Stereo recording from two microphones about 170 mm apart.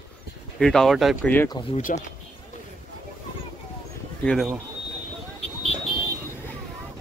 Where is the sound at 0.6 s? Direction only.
5° left (ahead or behind).